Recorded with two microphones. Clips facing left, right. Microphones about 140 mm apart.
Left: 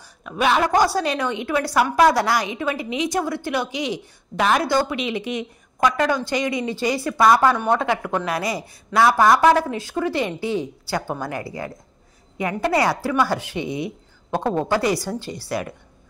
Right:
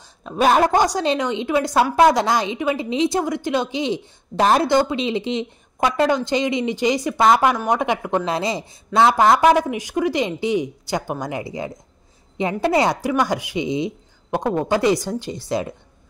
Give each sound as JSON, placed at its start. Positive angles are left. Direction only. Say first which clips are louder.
{"t": 0.2, "sound": "a woman's voice", "louder": "right 4 dB", "side_deg": -35}
{"t": 0.7, "sound": "speech", "louder": "right 1 dB", "side_deg": -20}
{"t": 4.6, "sound": "a woman's voice", "louder": "right 3 dB", "side_deg": -20}